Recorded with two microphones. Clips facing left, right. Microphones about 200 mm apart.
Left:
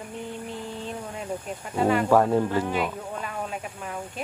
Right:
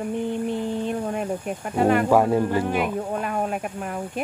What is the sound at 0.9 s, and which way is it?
Speech, 60° right (ahead or behind).